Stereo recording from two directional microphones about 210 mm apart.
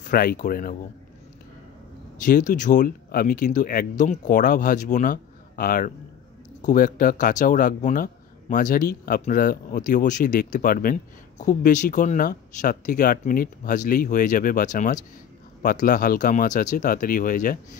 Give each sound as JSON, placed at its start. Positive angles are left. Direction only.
{"t": 0.0, "sound": "speech", "side_deg": 40}
{"t": 2.2, "sound": "speech", "side_deg": 40}